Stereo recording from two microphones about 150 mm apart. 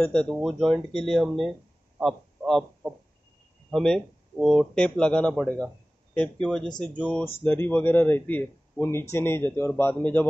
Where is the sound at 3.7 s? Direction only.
5° left (ahead or behind).